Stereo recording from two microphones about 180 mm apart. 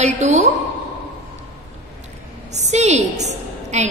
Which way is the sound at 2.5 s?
40° right (ahead or behind).